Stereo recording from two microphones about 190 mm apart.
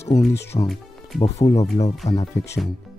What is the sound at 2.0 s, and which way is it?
Speech, 35° left (ahead or behind).